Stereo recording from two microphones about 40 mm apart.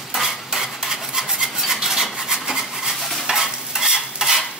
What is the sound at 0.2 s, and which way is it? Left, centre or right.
Cutlery, centre.